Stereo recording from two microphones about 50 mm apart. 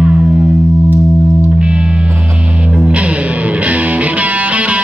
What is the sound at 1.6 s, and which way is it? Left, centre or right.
Music, right.